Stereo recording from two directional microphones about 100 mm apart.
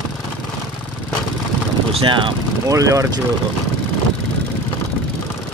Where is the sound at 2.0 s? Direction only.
55° right (ahead or behind).